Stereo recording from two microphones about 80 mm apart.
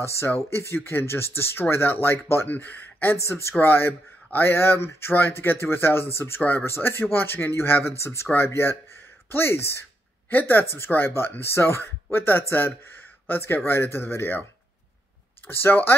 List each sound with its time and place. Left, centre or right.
0.0 s speech: left
3.2 s speech: left
15.4 s speech: left